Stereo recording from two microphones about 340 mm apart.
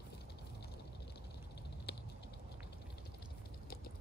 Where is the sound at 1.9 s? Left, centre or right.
Left.